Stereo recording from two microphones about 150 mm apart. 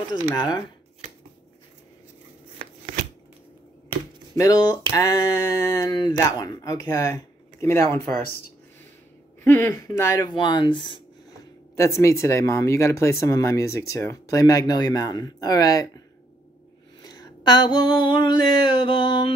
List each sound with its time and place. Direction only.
0.1 s speech: 30° left (ahead or behind)
4.4 s speech: 25° left (ahead or behind)
9.4 s speech: 15° left (ahead or behind); by 11.0 s 35° left (ahead or behind)
11.7 s speech: 20° left (ahead or behind)
17.0 s a sound: 25° left (ahead or behind)